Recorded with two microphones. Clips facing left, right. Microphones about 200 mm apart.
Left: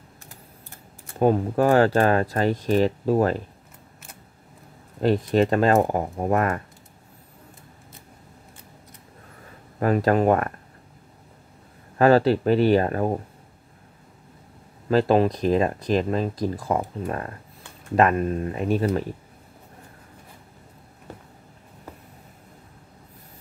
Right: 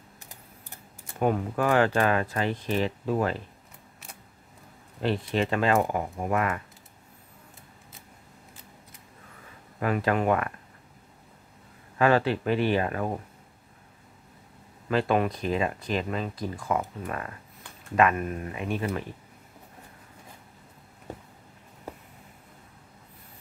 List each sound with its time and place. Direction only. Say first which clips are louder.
1.2 s speech: left 6 dB; 35° left (ahead or behind)
5.0 s speech: left 7 dB; 40° left (ahead or behind)
9.8 s speech: left 6 dB; 40° left (ahead or behind)
12.0 s speech: left 6 dB; 40° left (ahead or behind)
14.9 s speech: left 6 dB; 35° left (ahead or behind)